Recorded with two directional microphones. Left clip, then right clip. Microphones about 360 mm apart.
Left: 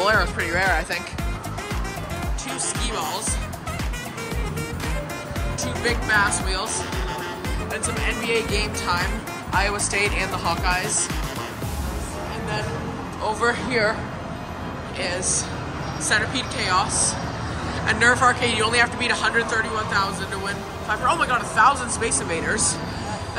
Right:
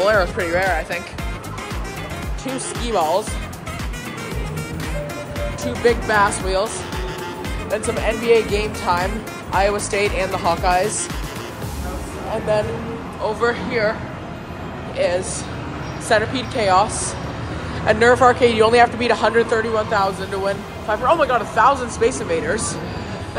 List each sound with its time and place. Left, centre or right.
0.0 s speech: centre
2.5 s speech: centre
5.6 s speech: centre
7.7 s speech: centre
13.2 s speech: centre
15.0 s speech: centre